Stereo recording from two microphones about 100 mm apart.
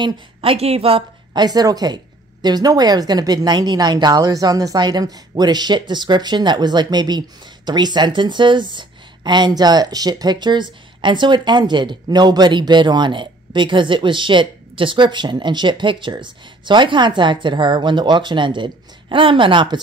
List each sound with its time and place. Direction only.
0.0 s a woman's voice: 65° right (ahead or behind)
1.3 s a woman's voice: 40° right (ahead or behind)